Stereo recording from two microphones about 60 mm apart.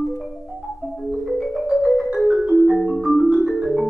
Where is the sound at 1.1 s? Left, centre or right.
Centre.